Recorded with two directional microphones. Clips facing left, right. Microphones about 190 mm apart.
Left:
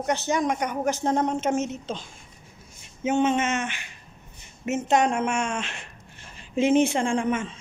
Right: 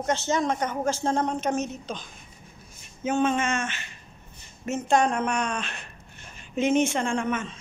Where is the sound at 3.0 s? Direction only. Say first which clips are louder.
Left 2 dB; 20° left (ahead or behind).